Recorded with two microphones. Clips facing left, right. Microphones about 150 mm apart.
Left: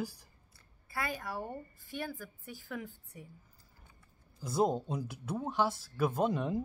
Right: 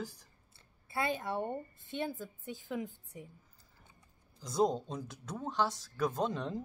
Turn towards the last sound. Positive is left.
turn(degrees=10)  # may be behind; listen again after turning